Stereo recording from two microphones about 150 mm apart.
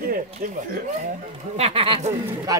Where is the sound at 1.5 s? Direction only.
40° right (ahead or behind).